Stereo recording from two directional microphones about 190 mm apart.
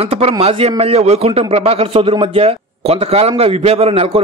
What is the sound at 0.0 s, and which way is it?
A man's voice, 30° right (ahead or behind).